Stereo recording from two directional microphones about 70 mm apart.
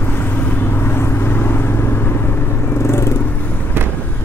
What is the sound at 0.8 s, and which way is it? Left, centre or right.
Vehicle, left.